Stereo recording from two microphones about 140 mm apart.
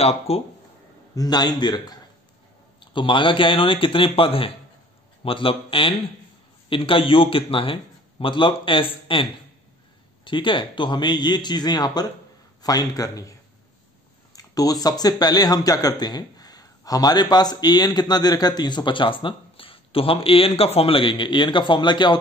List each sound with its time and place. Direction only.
0.3 s speech: 45° left (ahead or behind)
1.1 s a man's voice: 30° left (ahead or behind)